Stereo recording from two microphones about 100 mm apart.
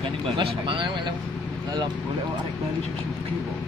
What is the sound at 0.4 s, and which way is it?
Speech, 60° right (ahead or behind).